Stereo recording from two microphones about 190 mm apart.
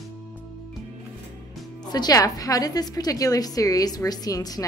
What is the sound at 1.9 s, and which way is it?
A woman's voice, 20° left (ahead or behind).